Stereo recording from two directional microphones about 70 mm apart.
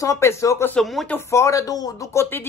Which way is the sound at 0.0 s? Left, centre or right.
Left.